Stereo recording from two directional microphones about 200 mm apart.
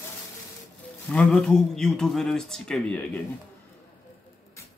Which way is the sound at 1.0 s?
5° left (ahead or behind).